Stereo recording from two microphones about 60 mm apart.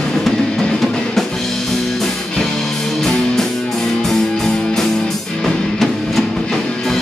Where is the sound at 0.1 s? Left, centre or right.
Centre.